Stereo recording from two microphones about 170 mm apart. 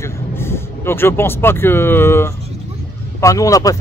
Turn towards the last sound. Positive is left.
turn(degrees=20)  # may be behind; listen again after turning